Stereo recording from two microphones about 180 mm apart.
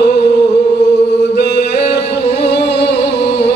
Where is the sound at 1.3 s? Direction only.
70° left (ahead or behind).